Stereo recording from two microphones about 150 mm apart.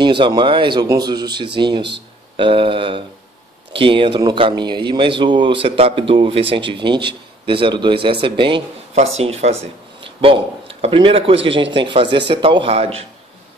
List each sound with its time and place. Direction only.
0.0 s a man's voice: 30° right (ahead or behind)